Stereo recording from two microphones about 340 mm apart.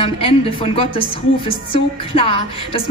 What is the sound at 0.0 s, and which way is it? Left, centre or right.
A woman's voice, centre.